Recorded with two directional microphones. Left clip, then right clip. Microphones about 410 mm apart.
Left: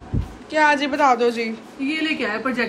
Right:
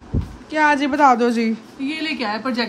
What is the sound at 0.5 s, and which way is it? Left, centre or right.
A woman's voice, centre.